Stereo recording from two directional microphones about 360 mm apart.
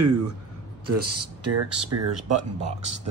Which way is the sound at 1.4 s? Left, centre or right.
Right.